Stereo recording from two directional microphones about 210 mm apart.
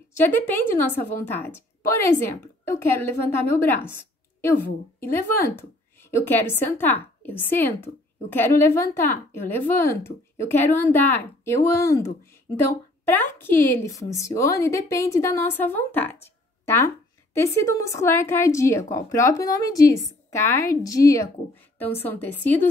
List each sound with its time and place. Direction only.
0.1 s a woman's voice: 10° left (ahead or behind)
5.1 s a woman's voice: 10° left (ahead or behind)